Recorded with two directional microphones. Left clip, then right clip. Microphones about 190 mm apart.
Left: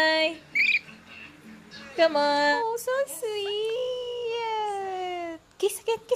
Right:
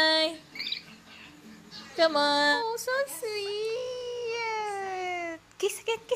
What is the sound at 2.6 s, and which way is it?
Speech, 20° left (ahead or behind).